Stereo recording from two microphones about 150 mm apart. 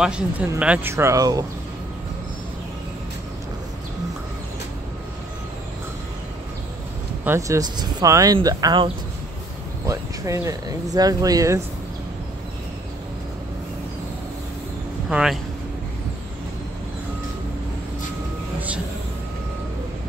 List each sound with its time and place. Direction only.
0.0 s speech: 5° right (ahead or behind); by 1.4 s 25° right (ahead or behind)
7.2 s speech: 20° right (ahead or behind)
9.8 s speech: 20° right (ahead or behind)
15.0 s speech: 5° right (ahead or behind)